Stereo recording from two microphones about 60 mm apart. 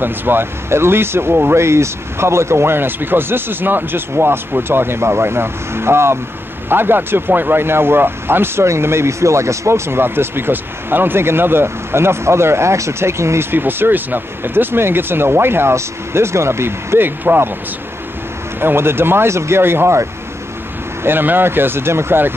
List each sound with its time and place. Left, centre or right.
0.0 s speech: right
13.5 s speech: right
18.6 s speech: right